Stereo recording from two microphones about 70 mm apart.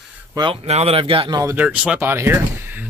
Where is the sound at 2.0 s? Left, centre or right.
Right.